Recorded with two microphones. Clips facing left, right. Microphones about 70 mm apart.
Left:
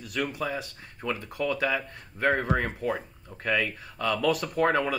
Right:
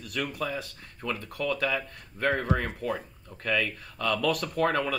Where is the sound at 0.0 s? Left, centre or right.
Centre.